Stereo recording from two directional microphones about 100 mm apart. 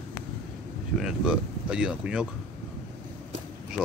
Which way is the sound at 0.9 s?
10° right (ahead or behind).